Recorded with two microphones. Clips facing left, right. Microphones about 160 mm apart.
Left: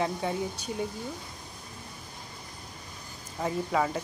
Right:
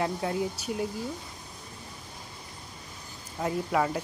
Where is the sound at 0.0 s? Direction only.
Centre (ahead or behind).